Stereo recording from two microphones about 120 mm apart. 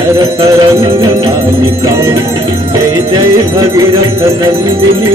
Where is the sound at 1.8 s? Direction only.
30° right (ahead or behind).